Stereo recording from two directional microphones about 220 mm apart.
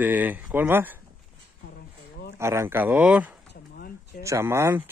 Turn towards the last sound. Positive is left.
turn(degrees=-10)  # may be behind; listen again after turning